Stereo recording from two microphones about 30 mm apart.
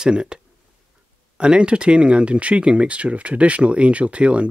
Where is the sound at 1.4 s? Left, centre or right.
Right.